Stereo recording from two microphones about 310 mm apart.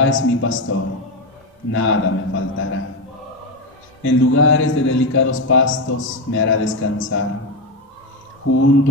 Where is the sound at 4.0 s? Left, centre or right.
Left.